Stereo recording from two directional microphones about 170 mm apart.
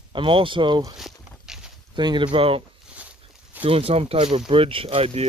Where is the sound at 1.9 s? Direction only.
25° right (ahead or behind).